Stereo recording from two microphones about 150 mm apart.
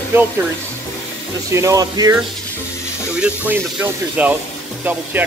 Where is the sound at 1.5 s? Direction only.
20° right (ahead or behind).